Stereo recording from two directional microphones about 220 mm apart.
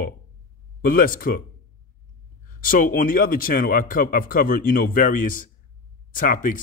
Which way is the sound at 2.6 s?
40° left (ahead or behind).